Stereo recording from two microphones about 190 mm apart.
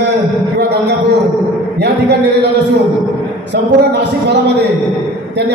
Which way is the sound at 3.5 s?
65° right (ahead or behind).